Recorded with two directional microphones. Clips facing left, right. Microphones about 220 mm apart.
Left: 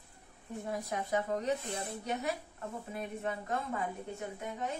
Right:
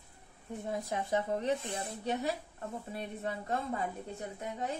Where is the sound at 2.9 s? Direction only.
35° right (ahead or behind).